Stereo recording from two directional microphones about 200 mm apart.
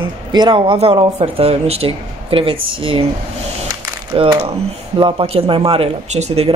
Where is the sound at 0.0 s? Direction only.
25° right (ahead or behind).